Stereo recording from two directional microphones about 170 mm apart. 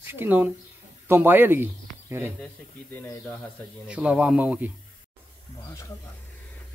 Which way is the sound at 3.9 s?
5° right (ahead or behind).